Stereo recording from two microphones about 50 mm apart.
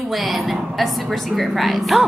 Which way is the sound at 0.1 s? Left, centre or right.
Centre.